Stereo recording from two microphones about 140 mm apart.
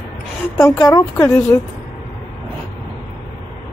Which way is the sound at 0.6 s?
20° left (ahead or behind).